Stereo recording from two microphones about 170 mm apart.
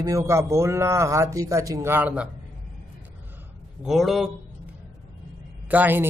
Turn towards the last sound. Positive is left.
turn(degrees=-10)  # may be behind; listen again after turning